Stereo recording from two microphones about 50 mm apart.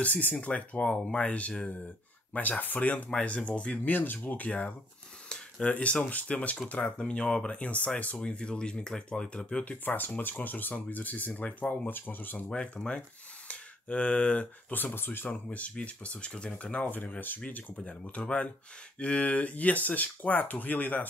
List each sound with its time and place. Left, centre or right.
0.0 s speech: left
9.8 s speech: left
11.9 s speech: left
12.4 s speech: centre
13.5 s a sound: left
15.0 s speech: left; by 16.5 s centre
16.5 s speech: left